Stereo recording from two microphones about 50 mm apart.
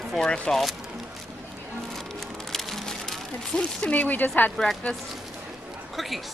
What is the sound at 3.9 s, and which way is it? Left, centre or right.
Speech, left.